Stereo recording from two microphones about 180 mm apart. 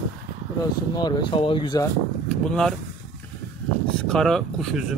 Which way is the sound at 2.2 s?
5° left (ahead or behind).